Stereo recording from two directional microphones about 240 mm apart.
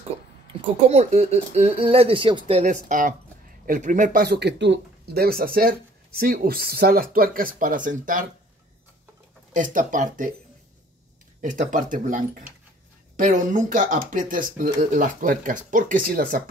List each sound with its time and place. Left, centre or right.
0.5 s speech: right
9.5 s speech: right
11.4 s speech: right